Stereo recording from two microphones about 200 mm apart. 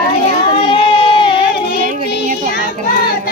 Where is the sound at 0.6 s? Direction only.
25° left (ahead or behind).